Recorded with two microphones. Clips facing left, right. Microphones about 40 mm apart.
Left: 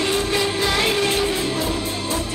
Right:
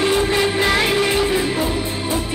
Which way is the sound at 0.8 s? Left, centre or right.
Centre.